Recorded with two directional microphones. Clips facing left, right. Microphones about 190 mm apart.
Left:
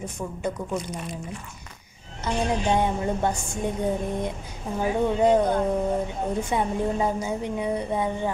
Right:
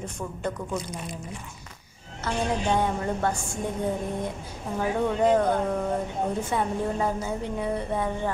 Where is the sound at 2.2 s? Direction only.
20° left (ahead or behind).